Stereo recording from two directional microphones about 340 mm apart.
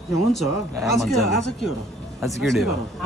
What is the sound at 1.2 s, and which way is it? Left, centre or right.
Speech, left.